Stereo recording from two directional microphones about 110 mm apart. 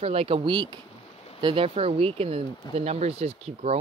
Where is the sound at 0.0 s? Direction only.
65° right (ahead or behind).